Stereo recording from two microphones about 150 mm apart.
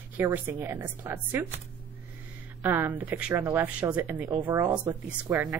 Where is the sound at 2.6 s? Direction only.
10° right (ahead or behind).